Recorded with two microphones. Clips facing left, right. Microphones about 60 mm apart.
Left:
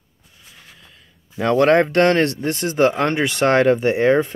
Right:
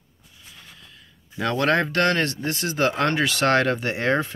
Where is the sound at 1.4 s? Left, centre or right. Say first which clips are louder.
Left 7 dB; left.